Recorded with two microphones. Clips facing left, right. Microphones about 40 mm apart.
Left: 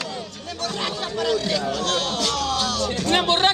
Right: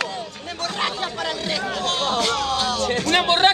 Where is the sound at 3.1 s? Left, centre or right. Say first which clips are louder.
Right 2 dB; centre.